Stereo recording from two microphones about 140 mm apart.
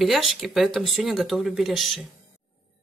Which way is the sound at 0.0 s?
Centre (ahead or behind).